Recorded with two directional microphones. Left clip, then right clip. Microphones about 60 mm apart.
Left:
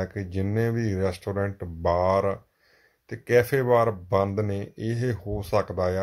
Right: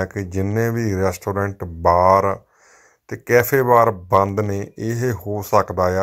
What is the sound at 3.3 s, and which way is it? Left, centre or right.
Speech, right.